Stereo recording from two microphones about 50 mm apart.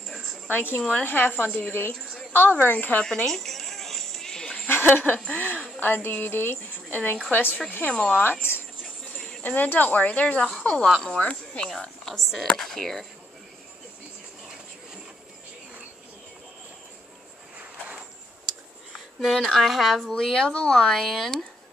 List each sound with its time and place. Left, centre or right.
0.5 s a woman's voice: left
1.7 s speech: left
2.5 s a woman's voice: left
3.0 s music: centre
4.6 s laughter: left
5.3 s a woman's voice: left
7.9 s speech: centre
8.2 s speech: left
9.6 s a woman's voice: left; by 11.1 s centre
11.1 s speech: left
11.7 s a woman's voice: centre
17.6 s a sound: right
19.1 s speech: centre
20.1 s speech: centre